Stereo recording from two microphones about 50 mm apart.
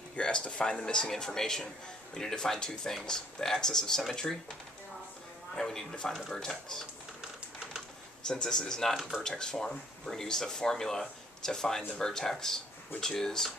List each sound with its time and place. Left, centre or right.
0.1 s speech: centre
5.6 s speech: centre
8.3 s speech: centre